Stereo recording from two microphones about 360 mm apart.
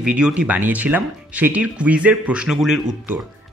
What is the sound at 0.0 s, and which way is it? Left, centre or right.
Speech, centre.